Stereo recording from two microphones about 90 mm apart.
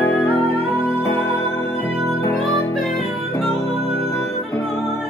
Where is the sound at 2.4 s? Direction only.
Centre (ahead or behind).